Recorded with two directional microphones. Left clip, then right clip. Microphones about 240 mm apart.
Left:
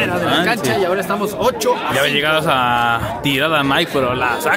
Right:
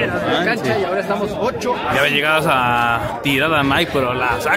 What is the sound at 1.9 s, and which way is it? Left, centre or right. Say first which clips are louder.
A man's voice: right 4 dB; centre.